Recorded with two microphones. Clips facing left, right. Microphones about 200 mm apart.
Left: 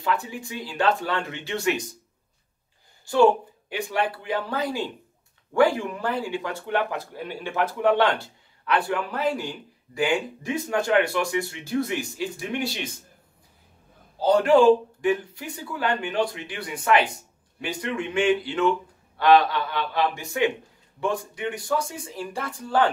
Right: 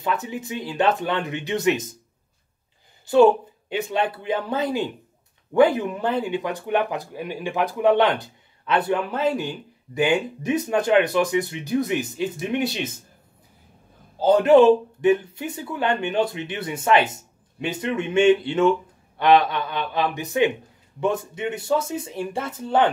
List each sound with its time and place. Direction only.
0.0 s speech: 20° right (ahead or behind)
3.1 s speech: 20° right (ahead or behind)
14.2 s speech: 20° right (ahead or behind)